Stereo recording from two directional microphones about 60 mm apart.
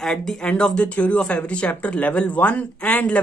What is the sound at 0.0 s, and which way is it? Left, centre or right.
Speech, centre.